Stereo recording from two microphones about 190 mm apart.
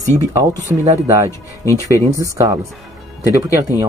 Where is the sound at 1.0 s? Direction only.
15° right (ahead or behind).